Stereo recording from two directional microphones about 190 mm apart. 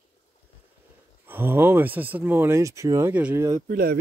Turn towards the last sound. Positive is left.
turn(degrees=-50)  # may be behind; listen again after turning